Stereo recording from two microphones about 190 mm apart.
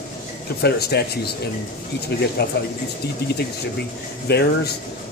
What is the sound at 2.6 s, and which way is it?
Speech, 60° left (ahead or behind).